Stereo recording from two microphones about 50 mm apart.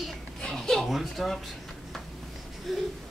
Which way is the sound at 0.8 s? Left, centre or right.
Centre.